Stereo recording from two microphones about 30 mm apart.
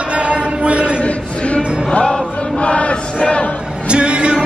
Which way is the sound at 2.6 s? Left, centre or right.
Left.